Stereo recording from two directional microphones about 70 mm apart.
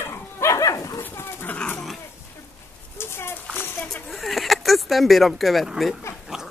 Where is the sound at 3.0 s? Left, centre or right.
Left.